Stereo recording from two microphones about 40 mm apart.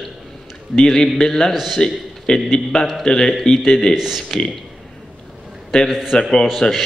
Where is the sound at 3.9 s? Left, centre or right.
Centre.